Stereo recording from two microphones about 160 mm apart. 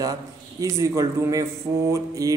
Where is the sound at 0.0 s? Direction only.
20° right (ahead or behind).